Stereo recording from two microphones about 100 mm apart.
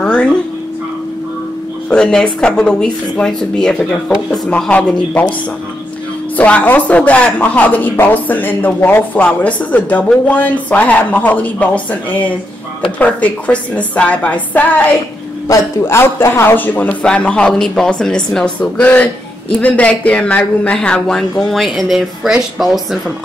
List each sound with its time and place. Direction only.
0.0 s a sound: 10° left (ahead or behind)
1.9 s speech: 10° left (ahead or behind)
6.3 s speech: 15° left (ahead or behind)
15.4 s speech: 30° left (ahead or behind); by 23.1 s centre (ahead or behind)